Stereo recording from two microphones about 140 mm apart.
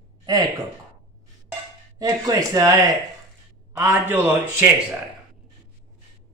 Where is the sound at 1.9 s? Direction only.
25° right (ahead or behind).